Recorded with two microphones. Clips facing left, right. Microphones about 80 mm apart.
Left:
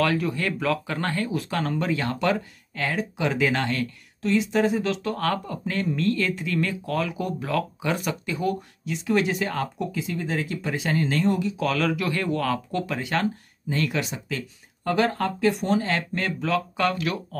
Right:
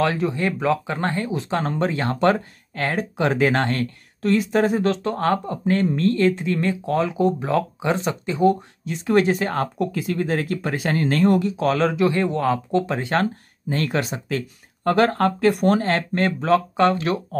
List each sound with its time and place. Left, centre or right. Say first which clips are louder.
0.0 s speech: right 3 dB; right
11.5 s speech: right 4 dB; right